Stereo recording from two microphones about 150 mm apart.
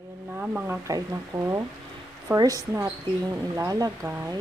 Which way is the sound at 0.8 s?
25° right (ahead or behind).